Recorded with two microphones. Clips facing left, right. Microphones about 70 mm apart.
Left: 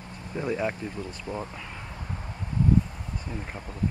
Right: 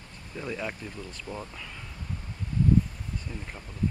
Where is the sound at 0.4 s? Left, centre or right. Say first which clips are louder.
Left 6 dB; left.